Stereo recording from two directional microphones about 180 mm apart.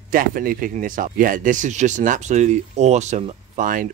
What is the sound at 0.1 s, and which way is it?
Speech, 50° right (ahead or behind).